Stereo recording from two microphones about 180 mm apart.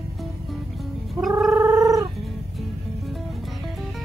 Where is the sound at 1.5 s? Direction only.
15° right (ahead or behind).